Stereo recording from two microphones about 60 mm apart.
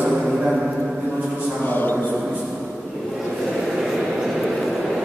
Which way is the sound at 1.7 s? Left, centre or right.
Left.